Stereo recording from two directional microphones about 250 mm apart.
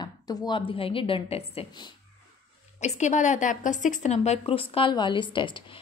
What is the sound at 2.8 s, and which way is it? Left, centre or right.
Speech, left.